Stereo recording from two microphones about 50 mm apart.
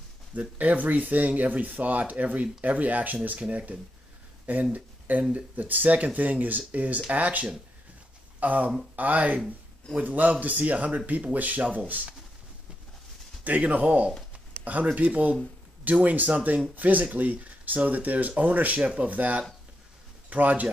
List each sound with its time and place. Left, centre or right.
0.3 s speech: right
4.7 s a sound: right
5.3 s speech: right
13.4 s speech: right